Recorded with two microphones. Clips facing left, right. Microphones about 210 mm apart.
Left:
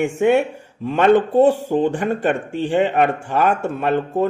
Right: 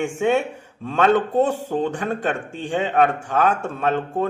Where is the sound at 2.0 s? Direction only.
10° left (ahead or behind).